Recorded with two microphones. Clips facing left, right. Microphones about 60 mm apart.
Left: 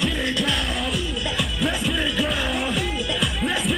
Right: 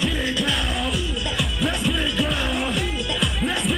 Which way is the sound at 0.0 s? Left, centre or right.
Centre.